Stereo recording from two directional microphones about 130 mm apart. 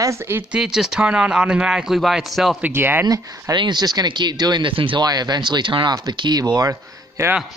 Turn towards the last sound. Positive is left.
turn(degrees=-25)  # may be behind; listen again after turning